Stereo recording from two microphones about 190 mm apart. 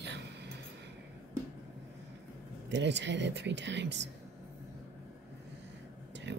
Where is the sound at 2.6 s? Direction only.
65° right (ahead or behind).